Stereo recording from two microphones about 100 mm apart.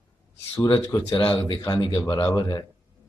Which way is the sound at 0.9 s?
40° left (ahead or behind).